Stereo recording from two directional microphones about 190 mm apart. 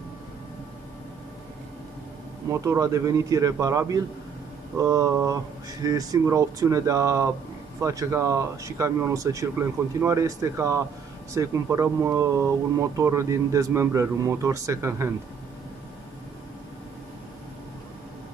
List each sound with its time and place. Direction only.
2.5 s speech: 15° right (ahead or behind)